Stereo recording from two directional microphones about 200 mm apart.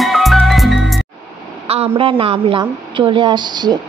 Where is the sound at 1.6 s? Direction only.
30° right (ahead or behind).